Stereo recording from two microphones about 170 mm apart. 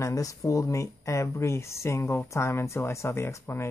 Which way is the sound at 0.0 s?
20° left (ahead or behind).